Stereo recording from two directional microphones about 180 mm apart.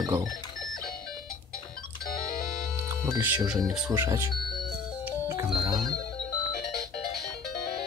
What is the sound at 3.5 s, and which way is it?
Speech, centre (ahead or behind).